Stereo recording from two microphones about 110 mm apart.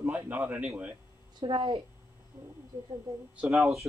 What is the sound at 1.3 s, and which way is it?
Speech, 50° right (ahead or behind).